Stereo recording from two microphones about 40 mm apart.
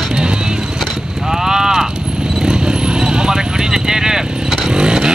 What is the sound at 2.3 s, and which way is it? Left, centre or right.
Vehicle, centre.